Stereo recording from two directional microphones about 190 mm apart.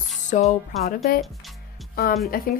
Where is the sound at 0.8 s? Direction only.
50° left (ahead or behind).